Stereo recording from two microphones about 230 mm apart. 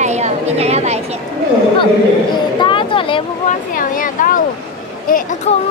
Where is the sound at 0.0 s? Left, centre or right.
Right.